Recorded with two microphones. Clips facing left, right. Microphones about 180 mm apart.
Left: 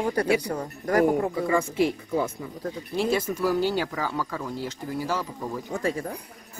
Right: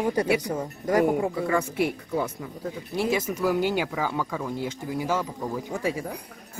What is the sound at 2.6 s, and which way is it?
Speech, 10° right (ahead or behind).